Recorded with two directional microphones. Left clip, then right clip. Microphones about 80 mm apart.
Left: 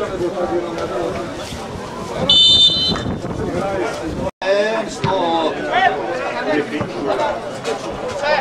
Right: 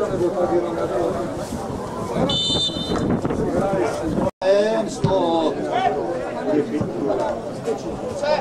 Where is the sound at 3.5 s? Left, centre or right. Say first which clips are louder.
Left 2 dB; centre.